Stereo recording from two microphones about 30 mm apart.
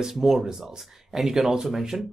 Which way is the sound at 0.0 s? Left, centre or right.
Centre.